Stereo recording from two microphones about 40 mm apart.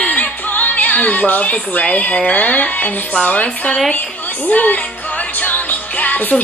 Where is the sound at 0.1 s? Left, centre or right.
Left.